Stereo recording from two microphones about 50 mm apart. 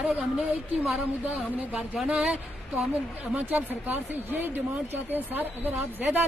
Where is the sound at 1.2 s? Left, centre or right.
Right.